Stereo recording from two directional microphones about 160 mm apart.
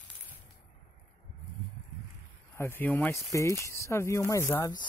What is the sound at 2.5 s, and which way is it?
Speech, 15° left (ahead or behind).